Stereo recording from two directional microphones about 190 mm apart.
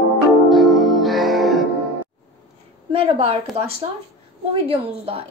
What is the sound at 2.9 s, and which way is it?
Speech, 30° right (ahead or behind).